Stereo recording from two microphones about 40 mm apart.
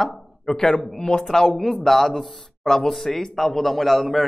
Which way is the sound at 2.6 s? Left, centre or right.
Centre.